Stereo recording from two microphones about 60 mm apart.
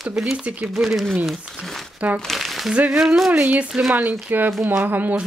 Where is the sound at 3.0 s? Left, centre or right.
Centre.